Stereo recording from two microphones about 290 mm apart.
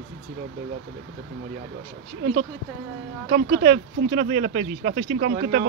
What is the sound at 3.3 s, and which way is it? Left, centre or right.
Speech, right.